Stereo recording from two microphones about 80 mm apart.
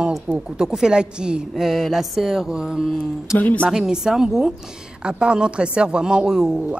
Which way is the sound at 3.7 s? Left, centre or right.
Centre.